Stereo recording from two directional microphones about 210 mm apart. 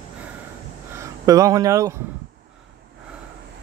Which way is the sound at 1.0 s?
15° right (ahead or behind).